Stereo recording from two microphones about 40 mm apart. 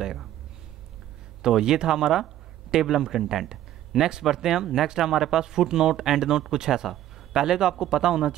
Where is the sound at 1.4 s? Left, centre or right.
Centre.